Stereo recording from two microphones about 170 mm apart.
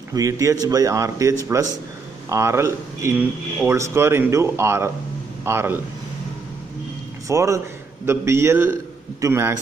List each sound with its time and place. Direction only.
0.1 s speech: 20° right (ahead or behind)
7.2 s a man's voice: 20° right (ahead or behind)